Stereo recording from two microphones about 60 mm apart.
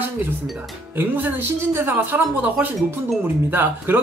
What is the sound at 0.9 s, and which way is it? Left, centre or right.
Speech, right.